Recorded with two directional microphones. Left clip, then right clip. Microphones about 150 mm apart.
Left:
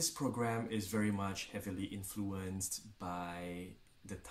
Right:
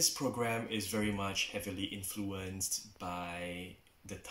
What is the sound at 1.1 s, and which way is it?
Speech, 15° left (ahead or behind).